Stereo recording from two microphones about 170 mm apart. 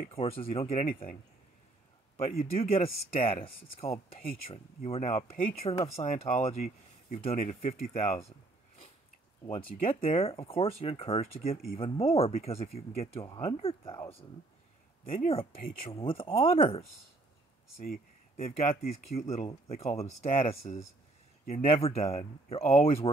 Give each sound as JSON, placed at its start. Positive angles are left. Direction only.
{"t": 0.1, "sound": "speech", "side_deg": 35}
{"t": 2.1, "sound": "speech", "side_deg": 40}
{"t": 5.9, "sound": "speech", "side_deg": 40}
{"t": 9.5, "sound": "speech", "side_deg": 35}
{"t": 15.0, "sound": "speech", "side_deg": 35}
{"t": 18.4, "sound": "speech", "side_deg": 40}